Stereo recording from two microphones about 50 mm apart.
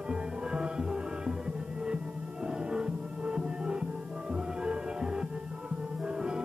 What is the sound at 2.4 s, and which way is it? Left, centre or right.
Music, centre.